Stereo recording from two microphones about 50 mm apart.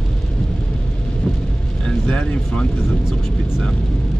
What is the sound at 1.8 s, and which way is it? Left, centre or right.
Vehicle, centre.